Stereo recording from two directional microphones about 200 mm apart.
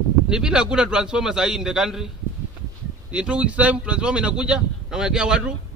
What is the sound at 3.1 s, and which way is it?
Speech, 5° right (ahead or behind).